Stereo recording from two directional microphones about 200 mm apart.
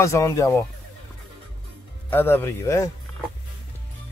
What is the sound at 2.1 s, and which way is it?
Speech, 10° left (ahead or behind).